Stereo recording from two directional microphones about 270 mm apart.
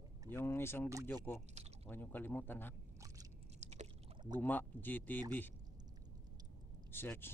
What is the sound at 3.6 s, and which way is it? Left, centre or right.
Rowboat, right.